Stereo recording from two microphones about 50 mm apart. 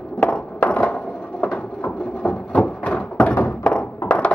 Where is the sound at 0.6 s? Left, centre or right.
Left.